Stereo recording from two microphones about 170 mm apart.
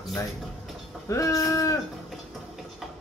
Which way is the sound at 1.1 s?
20° left (ahead or behind).